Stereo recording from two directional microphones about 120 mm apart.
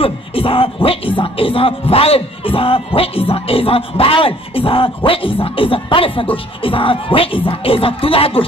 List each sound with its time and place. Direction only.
0.0 s music: 50° left (ahead or behind)